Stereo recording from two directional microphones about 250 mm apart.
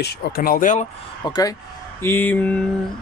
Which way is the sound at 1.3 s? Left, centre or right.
Centre.